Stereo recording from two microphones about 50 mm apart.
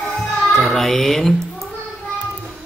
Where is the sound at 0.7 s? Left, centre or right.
Centre.